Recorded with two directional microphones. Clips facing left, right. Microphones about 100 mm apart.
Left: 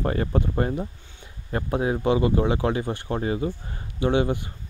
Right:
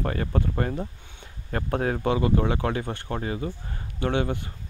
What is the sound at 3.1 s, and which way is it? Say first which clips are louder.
Speech: left 4 dB; 25° left (ahead or behind).